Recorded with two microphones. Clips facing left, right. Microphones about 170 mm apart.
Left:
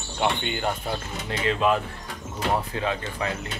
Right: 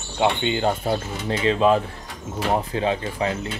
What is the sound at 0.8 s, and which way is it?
Speech, 40° right (ahead or behind).